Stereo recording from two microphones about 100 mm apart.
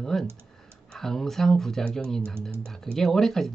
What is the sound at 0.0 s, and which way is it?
Speech, 5° left (ahead or behind).